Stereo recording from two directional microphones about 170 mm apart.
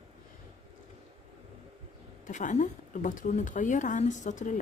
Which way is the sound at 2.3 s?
45° left (ahead or behind).